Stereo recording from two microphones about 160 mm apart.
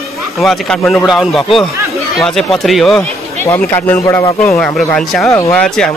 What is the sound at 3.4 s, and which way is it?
Speech, 15° left (ahead or behind).